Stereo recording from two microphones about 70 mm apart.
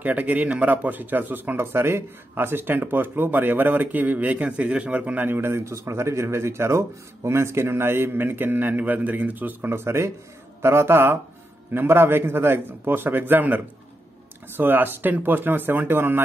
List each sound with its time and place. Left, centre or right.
0.0 s a man's voice: right